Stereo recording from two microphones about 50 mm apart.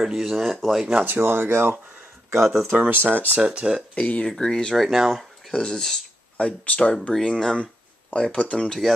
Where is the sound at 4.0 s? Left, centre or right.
Left.